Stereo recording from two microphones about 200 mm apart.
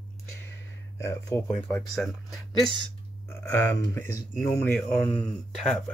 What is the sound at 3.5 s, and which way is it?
Speech, 15° left (ahead or behind).